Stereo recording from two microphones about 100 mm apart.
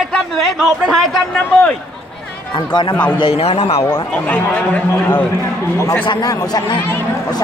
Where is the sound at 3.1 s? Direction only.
75° left (ahead or behind).